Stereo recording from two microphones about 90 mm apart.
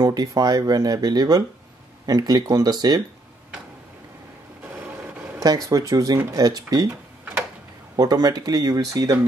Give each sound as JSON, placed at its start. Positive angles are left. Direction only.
{"t": 0.0, "sound": "speech", "side_deg": -45}
{"t": 5.7, "sound": "speech", "side_deg": -40}
{"t": 7.9, "sound": "speech", "side_deg": -45}